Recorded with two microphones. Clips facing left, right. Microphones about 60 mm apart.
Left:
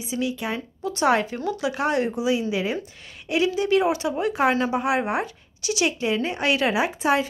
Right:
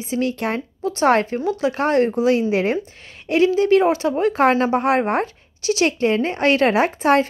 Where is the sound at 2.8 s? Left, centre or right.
Right.